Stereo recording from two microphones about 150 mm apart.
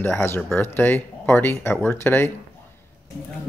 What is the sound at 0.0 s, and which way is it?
Speech, 15° left (ahead or behind).